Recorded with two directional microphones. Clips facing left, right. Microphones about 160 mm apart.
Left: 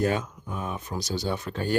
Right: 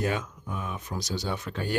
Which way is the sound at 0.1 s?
35° left (ahead or behind).